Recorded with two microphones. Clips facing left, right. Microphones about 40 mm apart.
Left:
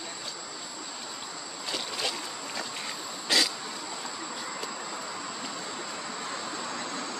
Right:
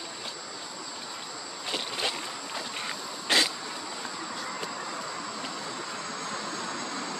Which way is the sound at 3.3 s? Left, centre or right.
Right.